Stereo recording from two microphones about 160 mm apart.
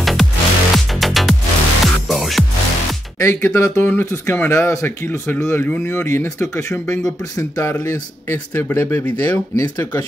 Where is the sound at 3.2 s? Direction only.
15° left (ahead or behind).